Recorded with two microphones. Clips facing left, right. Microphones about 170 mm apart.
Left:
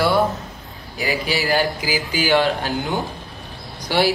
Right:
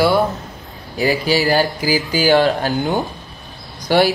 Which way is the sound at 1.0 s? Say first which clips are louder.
Right 6 dB; 35° right (ahead or behind).